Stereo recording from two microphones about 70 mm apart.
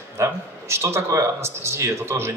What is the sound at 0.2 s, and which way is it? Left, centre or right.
A man's voice, right.